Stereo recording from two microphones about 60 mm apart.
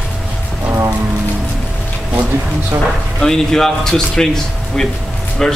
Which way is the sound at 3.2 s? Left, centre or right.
Centre.